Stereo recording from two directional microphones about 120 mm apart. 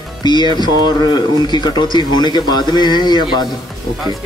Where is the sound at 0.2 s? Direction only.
40° left (ahead or behind).